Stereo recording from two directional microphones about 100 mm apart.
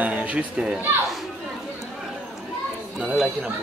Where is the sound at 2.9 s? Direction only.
5° right (ahead or behind).